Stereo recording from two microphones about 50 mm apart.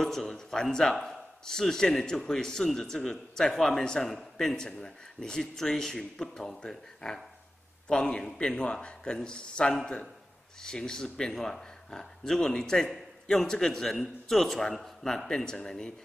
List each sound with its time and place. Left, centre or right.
0.0 s speech: centre
0.9 s a man's voice: centre